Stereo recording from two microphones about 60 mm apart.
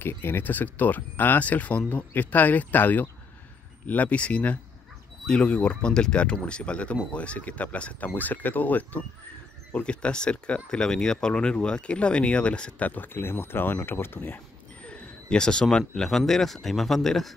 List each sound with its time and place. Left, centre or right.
0.0 s speech: left; by 12.8 s centre
12.8 s speech: left
14.8 s a sound: centre
15.9 s a man's voice: centre